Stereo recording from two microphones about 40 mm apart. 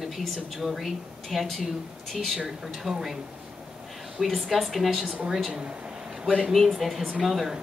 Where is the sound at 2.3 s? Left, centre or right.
Centre.